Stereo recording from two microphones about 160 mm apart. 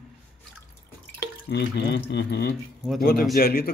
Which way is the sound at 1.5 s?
90° left.